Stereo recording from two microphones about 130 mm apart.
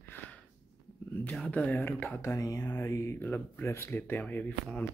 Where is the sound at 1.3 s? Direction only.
5° left (ahead or behind).